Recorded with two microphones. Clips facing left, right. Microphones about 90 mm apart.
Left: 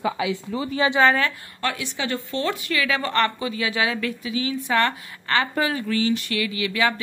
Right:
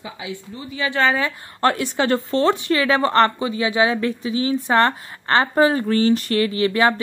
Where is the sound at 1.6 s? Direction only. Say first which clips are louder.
Right 8 dB; 45° right (ahead or behind).